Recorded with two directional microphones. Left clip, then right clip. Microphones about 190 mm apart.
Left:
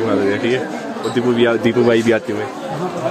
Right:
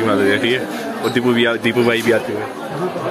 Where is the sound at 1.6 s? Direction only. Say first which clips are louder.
Left 2 dB; 15° left (ahead or behind).